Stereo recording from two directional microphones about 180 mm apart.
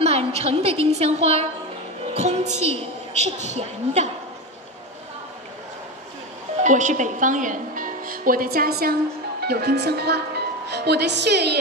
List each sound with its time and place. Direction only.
0.0 s a woman's voice: 35° right (ahead or behind)
6.6 s a woman's voice: 45° right (ahead or behind); by 11.5 s 65° right (ahead or behind)